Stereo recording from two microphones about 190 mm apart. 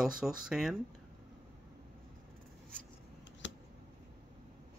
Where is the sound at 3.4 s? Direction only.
70° left (ahead or behind).